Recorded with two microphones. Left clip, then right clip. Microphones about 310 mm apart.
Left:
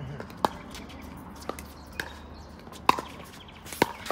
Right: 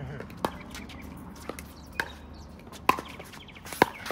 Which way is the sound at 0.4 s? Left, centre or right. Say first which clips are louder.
Left 5 dB; centre.